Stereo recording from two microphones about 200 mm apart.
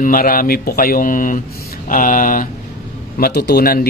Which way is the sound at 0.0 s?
45° left (ahead or behind).